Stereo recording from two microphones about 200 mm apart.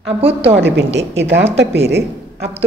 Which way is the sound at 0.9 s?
60° right (ahead or behind).